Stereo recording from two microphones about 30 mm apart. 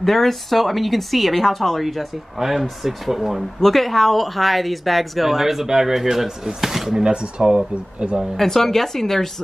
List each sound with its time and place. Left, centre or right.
0.0 s speech: centre
2.3 s speech: centre
3.6 s speech: centre
7.1 s speech: right
8.4 s a woman's voice: centre